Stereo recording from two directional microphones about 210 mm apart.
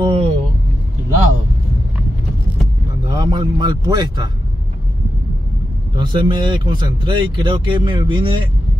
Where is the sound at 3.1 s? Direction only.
20° right (ahead or behind).